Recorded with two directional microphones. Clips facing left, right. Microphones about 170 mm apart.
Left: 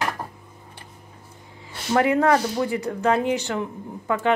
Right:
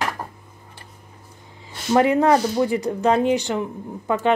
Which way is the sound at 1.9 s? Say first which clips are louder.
Right 2 dB; 20° right (ahead or behind).